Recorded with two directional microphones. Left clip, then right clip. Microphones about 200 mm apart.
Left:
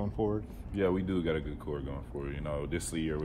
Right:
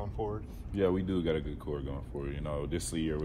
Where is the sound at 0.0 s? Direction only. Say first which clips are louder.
Left 4 dB; 55° left (ahead or behind).